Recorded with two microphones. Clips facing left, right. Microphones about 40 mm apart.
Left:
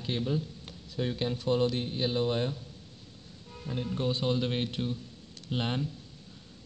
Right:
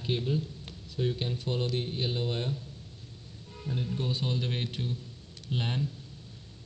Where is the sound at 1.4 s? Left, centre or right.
Left.